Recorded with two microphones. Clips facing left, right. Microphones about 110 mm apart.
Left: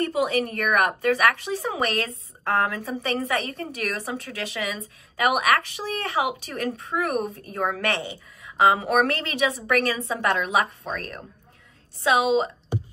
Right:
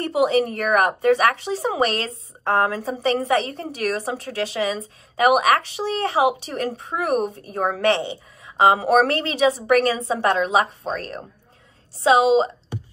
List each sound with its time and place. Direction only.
0.0 s speech: 25° right (ahead or behind)